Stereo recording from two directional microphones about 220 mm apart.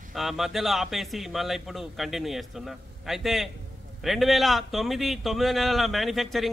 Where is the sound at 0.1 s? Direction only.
Centre (ahead or behind).